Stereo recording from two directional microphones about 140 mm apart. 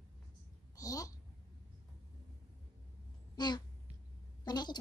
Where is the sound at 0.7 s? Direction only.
25° left (ahead or behind).